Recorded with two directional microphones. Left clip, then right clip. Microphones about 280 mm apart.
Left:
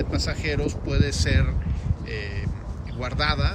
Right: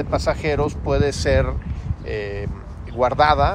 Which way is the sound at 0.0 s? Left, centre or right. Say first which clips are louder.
Right 7 dB; centre.